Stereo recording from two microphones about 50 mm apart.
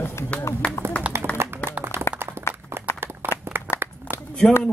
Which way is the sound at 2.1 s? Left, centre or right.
Left.